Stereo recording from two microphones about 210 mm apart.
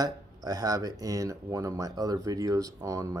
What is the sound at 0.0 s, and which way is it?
Speech, 15° right (ahead or behind).